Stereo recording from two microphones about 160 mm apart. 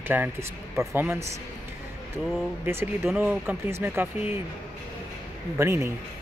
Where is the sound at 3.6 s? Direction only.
15° right (ahead or behind).